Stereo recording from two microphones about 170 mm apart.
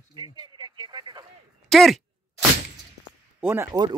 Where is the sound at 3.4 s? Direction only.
15° right (ahead or behind).